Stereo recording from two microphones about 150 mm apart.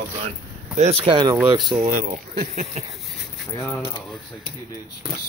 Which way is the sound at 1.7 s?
60° right (ahead or behind).